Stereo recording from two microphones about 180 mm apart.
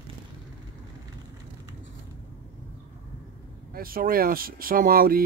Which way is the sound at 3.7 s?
55° right (ahead or behind).